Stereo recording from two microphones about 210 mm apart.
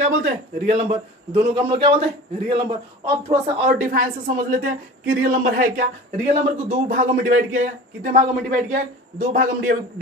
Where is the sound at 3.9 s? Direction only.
40° right (ahead or behind).